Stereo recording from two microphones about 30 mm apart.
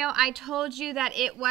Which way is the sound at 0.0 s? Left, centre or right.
Centre.